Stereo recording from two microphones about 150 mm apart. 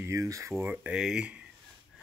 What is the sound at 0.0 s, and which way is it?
Speech, 20° right (ahead or behind).